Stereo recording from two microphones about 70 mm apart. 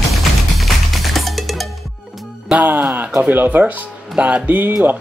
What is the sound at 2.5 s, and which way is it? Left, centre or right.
Music, right.